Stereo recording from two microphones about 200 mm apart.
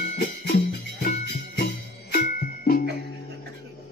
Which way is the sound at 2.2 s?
40° left (ahead or behind).